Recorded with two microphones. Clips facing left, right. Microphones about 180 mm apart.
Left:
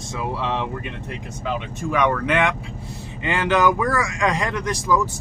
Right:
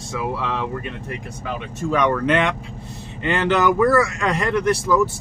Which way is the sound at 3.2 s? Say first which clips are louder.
Right 1 dB; 15° left (ahead or behind).